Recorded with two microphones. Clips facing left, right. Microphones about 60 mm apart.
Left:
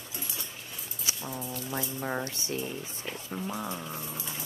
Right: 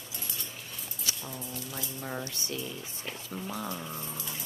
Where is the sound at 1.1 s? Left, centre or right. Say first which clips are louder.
Left 1 dB; centre.